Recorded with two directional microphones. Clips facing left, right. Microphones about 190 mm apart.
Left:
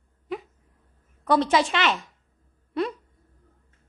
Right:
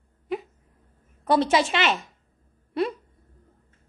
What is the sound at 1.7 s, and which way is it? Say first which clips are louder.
Speech: even; 20° right (ahead or behind).